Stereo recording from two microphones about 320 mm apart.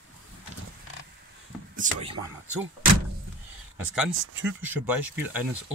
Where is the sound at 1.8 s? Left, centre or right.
Centre.